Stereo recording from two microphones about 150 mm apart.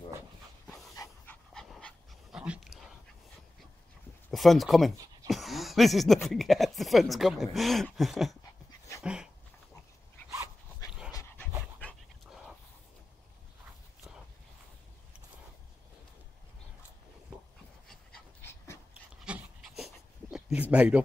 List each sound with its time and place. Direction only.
0.9 s dog: 20° left (ahead or behind)
1.5 s dog: 5° left (ahead or behind)
2.3 s dog: 5° right (ahead or behind)
4.3 s speech: centre (ahead or behind)
5.3 s a sound: centre (ahead or behind)
6.2 s speech: centre (ahead or behind)
9.0 s dog: 5° right (ahead or behind)
19.3 s dog: 5° right (ahead or behind)
19.8 s a sound: centre (ahead or behind)